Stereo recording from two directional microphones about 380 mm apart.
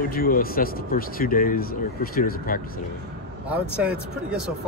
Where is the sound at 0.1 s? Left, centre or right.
Left.